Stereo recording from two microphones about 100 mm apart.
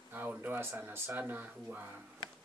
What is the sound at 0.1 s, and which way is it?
Speech, 20° right (ahead or behind).